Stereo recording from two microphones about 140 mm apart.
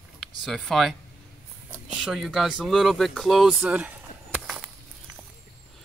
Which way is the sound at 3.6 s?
10° right (ahead or behind).